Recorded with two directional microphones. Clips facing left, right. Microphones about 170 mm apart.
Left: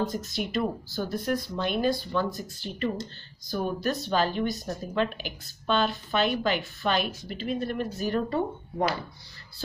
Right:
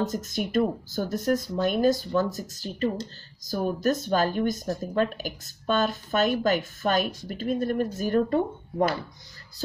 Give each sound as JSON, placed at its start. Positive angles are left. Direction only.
{"t": 0.0, "sound": "speech", "side_deg": -45}